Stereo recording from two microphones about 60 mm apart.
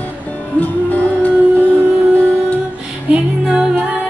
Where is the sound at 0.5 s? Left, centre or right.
Left.